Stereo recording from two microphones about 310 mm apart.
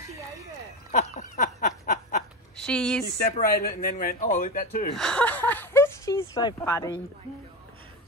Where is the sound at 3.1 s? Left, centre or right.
Left.